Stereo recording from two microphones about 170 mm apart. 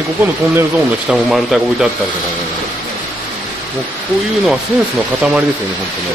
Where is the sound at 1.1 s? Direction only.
Centre (ahead or behind).